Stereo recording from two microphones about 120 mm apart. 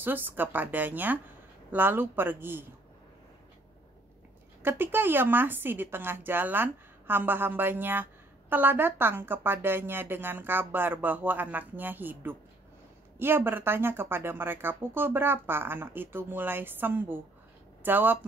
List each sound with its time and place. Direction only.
0.0 s speech: 15° right (ahead or behind)
4.6 s speech: 15° right (ahead or behind)